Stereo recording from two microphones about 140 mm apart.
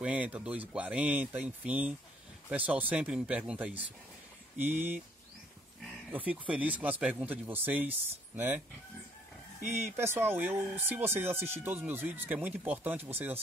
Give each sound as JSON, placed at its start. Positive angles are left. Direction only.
{"t": 0.0, "sound": "speech", "side_deg": -10}
{"t": 6.1, "sound": "speech", "side_deg": -10}
{"t": 9.6, "sound": "speech", "side_deg": -55}
{"t": 9.9, "sound": "speech", "side_deg": -15}